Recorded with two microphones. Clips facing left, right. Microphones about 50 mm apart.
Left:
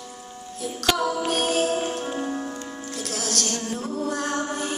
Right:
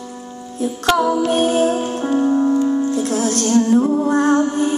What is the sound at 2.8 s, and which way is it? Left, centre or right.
Music, right.